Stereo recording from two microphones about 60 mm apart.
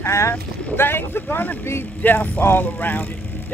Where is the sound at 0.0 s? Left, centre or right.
Left.